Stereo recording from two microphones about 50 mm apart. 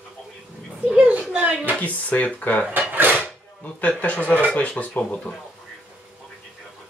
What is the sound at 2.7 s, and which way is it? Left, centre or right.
Drawer open or close, right.